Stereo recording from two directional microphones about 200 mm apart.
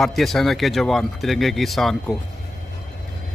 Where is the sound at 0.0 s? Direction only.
Centre (ahead or behind).